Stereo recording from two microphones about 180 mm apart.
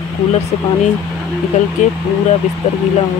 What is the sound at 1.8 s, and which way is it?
Speech, 45° left (ahead or behind).